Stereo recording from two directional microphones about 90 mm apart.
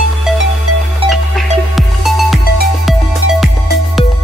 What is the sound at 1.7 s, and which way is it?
Music, centre (ahead or behind).